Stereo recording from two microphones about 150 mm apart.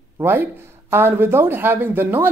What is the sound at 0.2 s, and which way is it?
Speech, 15° right (ahead or behind).